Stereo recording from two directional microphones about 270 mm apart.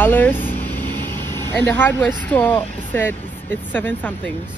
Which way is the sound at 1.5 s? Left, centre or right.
Centre.